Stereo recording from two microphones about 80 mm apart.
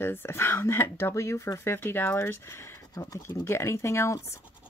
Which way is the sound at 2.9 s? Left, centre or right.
Left.